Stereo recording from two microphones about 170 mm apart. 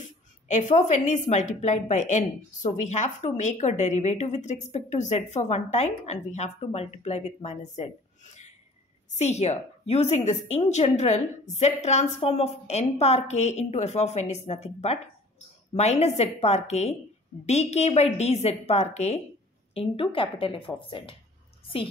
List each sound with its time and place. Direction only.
0.5 s a woman's voice: 45° left (ahead or behind)